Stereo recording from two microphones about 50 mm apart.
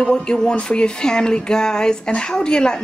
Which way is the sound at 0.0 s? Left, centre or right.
Centre.